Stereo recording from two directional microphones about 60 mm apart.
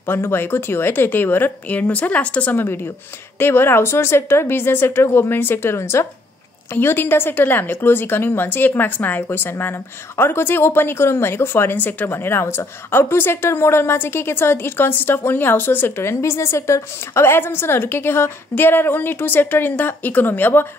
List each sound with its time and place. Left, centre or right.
0.0 s a woman's voice: left
2.5 s a woman's voice: left
16.1 s a woman's voice: left